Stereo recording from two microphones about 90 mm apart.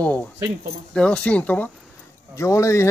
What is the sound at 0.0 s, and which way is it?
Speech, 20° left (ahead or behind).